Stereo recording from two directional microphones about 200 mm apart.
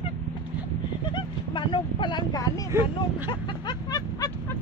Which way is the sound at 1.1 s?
25° left (ahead or behind).